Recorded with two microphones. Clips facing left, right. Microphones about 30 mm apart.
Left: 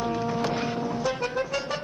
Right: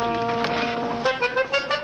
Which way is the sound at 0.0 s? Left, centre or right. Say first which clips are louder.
Right 4 dB; right.